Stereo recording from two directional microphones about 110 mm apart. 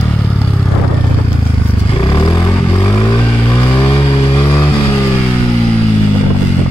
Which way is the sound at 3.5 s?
20° left (ahead or behind).